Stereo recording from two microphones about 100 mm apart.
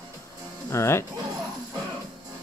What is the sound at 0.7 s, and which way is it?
Speech, 25° left (ahead or behind).